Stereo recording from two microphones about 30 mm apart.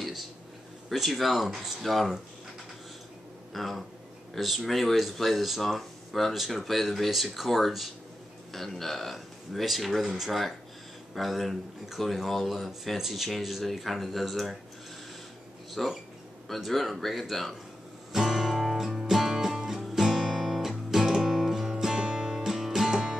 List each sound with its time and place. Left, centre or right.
0.0 s a sound: centre
0.8 s speech: centre
3.5 s speech: centre
5.6 s speech: centre
8.5 s speech: centre
10.0 s speech: centre
11.1 s speech: centre
15.8 s speech: centre
18.2 s music: centre
22.8 s music: right